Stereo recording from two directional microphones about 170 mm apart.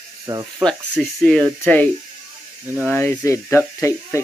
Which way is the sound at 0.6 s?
5° left (ahead or behind).